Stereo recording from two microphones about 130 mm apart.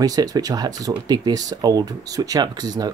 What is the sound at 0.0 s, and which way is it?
Speech, 30° right (ahead or behind).